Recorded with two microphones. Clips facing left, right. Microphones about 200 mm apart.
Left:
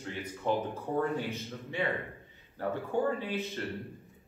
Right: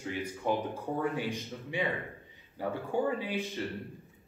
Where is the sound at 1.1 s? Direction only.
15° right (ahead or behind).